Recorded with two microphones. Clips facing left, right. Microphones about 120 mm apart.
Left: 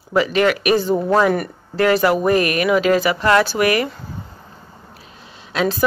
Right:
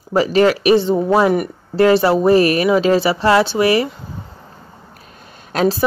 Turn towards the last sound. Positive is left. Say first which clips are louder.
# right 3 dB
turn(degrees=-35)  # may be behind; listen again after turning